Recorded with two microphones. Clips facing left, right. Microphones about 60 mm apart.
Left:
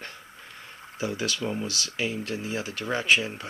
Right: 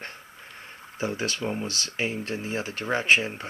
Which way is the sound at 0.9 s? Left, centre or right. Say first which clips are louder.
Right 1 dB; right.